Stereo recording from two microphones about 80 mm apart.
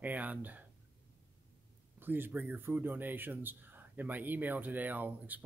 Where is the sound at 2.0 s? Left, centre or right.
Right.